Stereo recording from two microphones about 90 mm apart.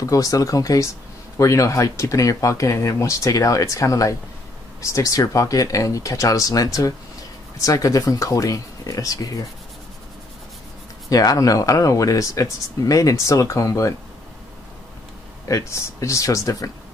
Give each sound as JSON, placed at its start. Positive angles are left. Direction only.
{"t": 0.0, "sound": "speech", "side_deg": 40}
{"t": 11.1, "sound": "speech", "side_deg": 40}
{"t": 15.4, "sound": "speech", "side_deg": 35}